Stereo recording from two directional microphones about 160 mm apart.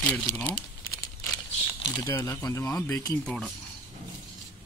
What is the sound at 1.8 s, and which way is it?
Speech, 20° left (ahead or behind).